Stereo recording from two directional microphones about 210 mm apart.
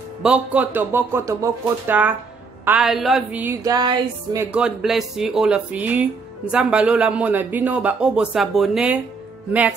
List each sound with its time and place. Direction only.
0.2 s a man's voice: 5° right (ahead or behind)
3.6 s speech: 20° right (ahead or behind)
4.5 s a man's voice: 5° right (ahead or behind)